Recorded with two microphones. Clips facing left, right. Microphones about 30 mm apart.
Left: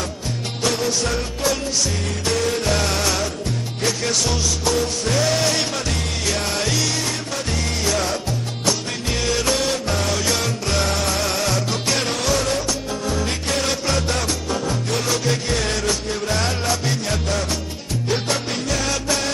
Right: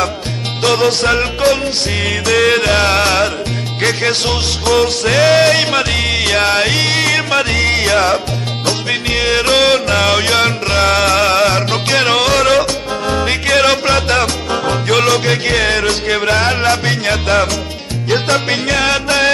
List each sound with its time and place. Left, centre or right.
0.6 s music: right
2.0 s music: right
13.1 s music: right
16.3 s music: right